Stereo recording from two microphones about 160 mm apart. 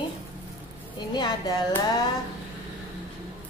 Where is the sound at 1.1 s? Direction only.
25° left (ahead or behind).